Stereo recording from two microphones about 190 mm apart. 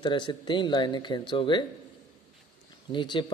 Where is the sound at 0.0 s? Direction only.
25° left (ahead or behind).